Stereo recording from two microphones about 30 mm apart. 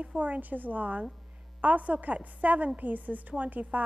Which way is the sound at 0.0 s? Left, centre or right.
Right.